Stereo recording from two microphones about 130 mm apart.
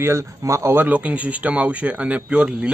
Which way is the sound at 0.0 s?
20° right (ahead or behind).